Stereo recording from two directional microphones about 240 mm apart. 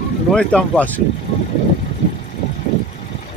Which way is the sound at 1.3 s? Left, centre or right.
Left.